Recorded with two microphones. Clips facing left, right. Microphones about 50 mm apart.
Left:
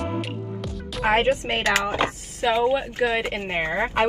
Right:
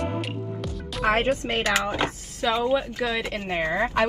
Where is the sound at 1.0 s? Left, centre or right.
Left.